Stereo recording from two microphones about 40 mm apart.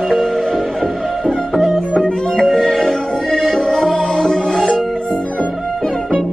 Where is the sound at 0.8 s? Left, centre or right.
Centre.